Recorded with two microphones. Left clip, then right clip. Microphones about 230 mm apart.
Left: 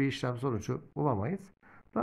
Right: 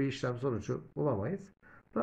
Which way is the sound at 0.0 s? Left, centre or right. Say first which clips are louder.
Left 1 dB; left.